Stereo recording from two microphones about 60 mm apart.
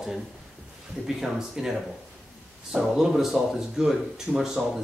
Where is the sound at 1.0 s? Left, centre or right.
Centre.